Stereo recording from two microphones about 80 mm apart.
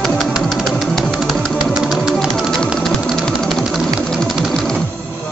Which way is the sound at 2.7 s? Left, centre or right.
Centre.